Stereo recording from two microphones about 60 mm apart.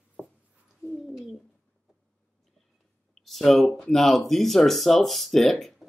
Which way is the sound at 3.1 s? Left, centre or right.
Centre.